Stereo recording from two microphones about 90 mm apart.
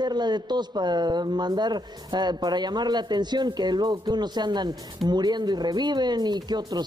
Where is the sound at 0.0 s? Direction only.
55° right (ahead or behind).